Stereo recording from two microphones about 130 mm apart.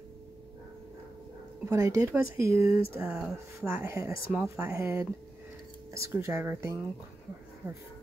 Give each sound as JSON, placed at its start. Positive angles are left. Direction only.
{"t": 1.7, "sound": "speech", "side_deg": -20}
{"t": 2.6, "sound": "speech", "side_deg": 45}
{"t": 2.9, "sound": "speech", "side_deg": -10}